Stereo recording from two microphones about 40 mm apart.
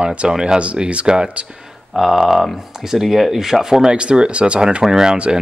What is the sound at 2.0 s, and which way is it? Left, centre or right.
Speech, centre.